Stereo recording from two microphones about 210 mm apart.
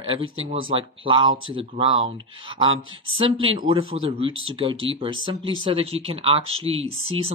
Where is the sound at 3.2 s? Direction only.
25° right (ahead or behind).